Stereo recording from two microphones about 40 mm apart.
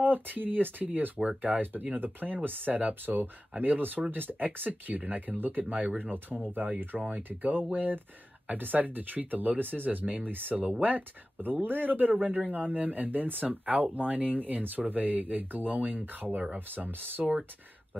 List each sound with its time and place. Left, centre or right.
0.0 s speech: right
7.0 s speech: right